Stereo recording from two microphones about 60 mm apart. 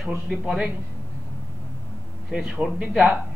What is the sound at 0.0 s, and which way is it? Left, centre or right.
Speech, centre.